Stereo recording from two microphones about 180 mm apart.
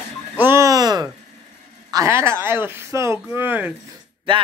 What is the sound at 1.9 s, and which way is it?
Speech, 15° right (ahead or behind).